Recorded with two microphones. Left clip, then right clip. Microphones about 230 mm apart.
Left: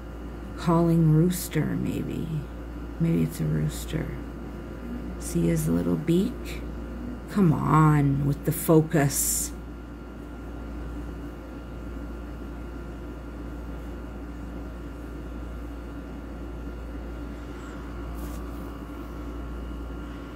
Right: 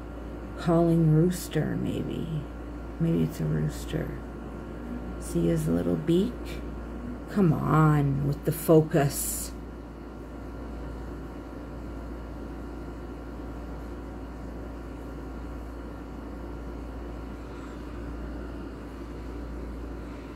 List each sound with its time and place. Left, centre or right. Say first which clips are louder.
0.6 s a woman's voice: even; centre
3.1 s a woman's voice: even; centre
5.5 s a woman's voice: even; centre
7.3 s speech: left 2 dB; centre